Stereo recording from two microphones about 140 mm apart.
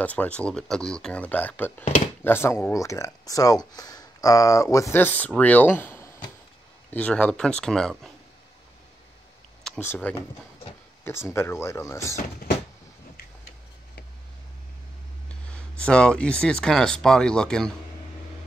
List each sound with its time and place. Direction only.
0.0 s speech: 10° left (ahead or behind)
9.8 s speech: 15° left (ahead or behind)
11.2 s speech: 20° left (ahead or behind)
15.2 s speech: 10° left (ahead or behind)